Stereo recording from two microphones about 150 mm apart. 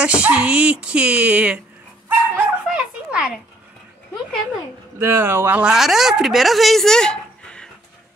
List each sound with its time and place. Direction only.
0.0 s speech: 10° right (ahead or behind)
2.0 s dog: 15° right (ahead or behind)
2.8 s a sound: 5° right (ahead or behind)
4.9 s speech: 15° right (ahead or behind); by 7.7 s 5° left (ahead or behind)